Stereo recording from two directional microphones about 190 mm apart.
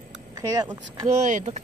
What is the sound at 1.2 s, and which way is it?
Speech, 40° right (ahead or behind).